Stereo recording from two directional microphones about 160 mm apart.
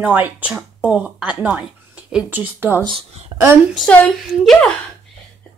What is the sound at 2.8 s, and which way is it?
Speech, 35° right (ahead or behind).